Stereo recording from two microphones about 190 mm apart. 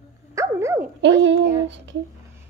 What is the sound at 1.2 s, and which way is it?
Speech, 70° right (ahead or behind).